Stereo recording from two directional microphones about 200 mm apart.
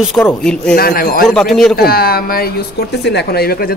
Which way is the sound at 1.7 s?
50° left (ahead or behind).